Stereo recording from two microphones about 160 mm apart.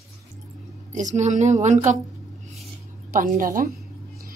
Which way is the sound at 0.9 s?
50° right (ahead or behind).